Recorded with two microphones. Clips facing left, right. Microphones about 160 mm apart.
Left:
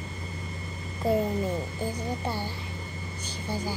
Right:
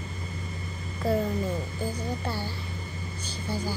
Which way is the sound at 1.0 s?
20° left (ahead or behind).